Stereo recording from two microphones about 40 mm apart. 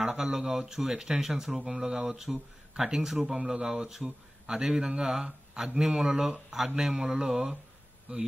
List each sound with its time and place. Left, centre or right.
0.0 s speech: centre
8.1 s speech: right